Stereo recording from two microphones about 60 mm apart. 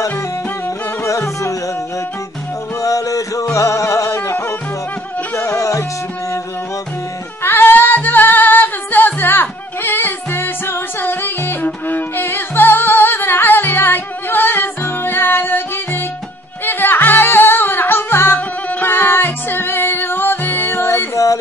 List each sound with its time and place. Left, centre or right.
1.0 s music: left
2.8 s music: left
3.5 s music: left
7.4 s music: left